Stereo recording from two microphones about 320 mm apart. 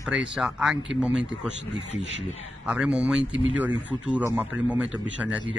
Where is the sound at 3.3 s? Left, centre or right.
Right.